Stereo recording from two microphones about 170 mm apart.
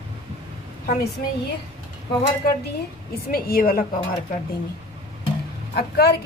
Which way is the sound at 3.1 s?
60° left (ahead or behind).